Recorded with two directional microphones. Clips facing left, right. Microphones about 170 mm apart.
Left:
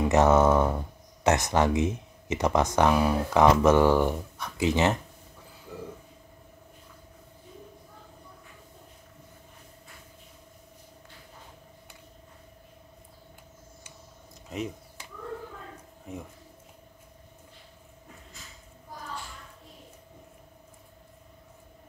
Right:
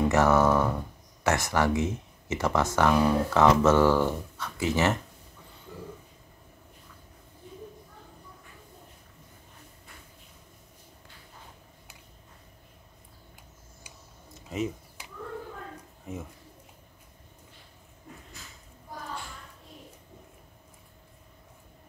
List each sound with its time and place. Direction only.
0.1 s speech: 20° left (ahead or behind)
14.5 s computer keyboard: centre (ahead or behind)
16.1 s speech: centre (ahead or behind)